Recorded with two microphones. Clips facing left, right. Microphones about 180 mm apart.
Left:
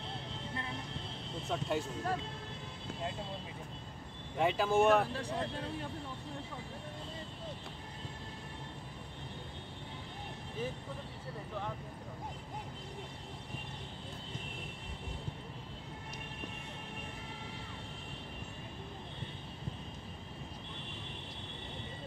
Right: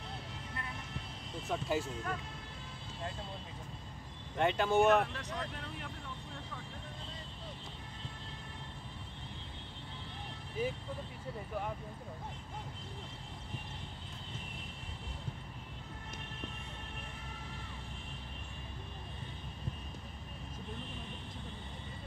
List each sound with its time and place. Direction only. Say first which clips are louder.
1.5 s speech: even; centre (ahead or behind)
4.4 s speech: even; centre (ahead or behind)
5.0 s speech: left 4 dB; 30° left (ahead or behind)
10.6 s speech: right 3 dB; 10° right (ahead or behind)